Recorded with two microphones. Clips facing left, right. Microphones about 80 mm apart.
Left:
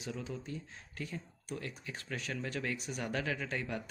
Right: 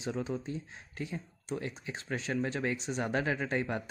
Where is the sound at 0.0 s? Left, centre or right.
Right.